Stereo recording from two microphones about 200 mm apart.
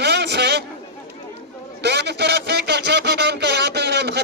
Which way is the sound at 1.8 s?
55° right (ahead or behind).